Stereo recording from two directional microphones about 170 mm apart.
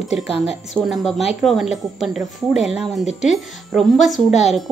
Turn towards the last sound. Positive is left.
turn(degrees=0)  # may be behind; listen again after turning